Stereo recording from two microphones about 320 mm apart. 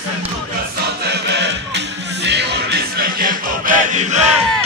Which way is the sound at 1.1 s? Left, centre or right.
Right.